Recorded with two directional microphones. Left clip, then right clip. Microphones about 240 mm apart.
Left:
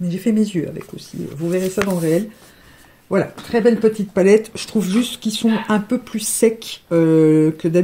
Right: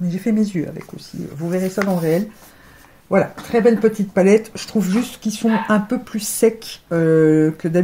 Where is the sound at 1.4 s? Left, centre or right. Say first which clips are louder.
Left 2 dB; left.